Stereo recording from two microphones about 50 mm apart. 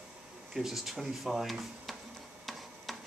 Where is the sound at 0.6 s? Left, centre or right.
Centre.